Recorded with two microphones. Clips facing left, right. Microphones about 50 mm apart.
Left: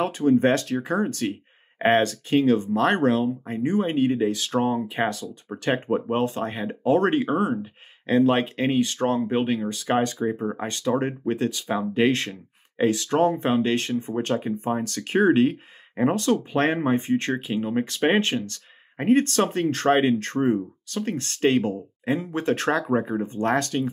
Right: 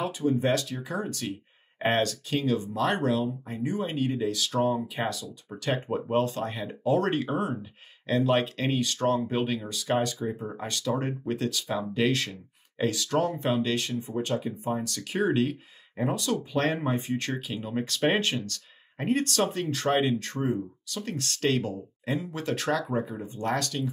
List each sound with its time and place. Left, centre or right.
0.0 s speech: left
5.9 s speech: left